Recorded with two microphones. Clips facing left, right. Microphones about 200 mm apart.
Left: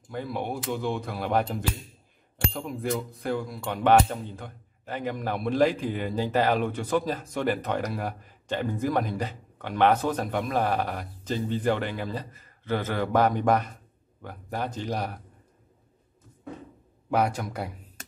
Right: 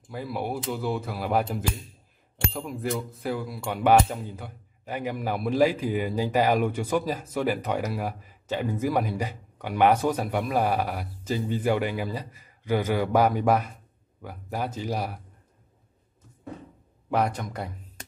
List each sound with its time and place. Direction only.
0.1 s speech: 5° right (ahead or behind)
17.1 s speech: centre (ahead or behind)